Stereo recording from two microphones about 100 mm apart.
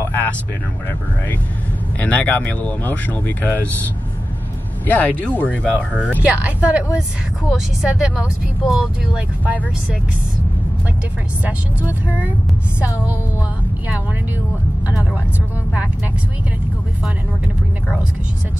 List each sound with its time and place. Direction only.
0.0 s vehicle: 20° left (ahead or behind)
2.0 s speech: 15° left (ahead or behind)
4.8 s speech: 15° left (ahead or behind)
6.2 s speech: 15° right (ahead or behind)
9.4 s speech: 15° right (ahead or behind)
11.4 s speech: 15° right (ahead or behind)